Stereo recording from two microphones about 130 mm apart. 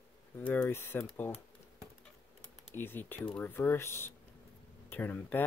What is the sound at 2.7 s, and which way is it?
Speech, 15° left (ahead or behind).